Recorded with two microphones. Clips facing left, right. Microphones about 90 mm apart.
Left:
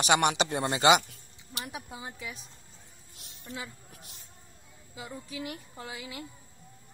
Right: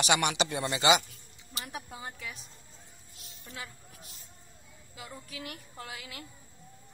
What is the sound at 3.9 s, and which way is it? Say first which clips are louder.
Music: left 1 dB; 55° left (ahead or behind).